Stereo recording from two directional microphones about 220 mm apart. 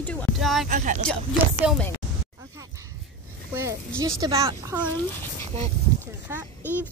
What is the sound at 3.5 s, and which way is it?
Speech, 15° right (ahead or behind).